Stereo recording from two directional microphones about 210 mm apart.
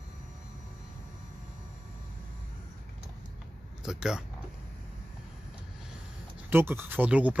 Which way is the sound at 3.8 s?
5° right (ahead or behind).